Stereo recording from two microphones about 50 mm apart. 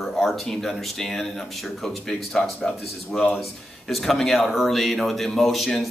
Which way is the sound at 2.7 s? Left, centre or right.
Left.